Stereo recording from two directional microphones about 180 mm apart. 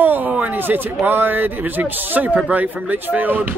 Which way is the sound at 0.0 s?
10° right (ahead or behind).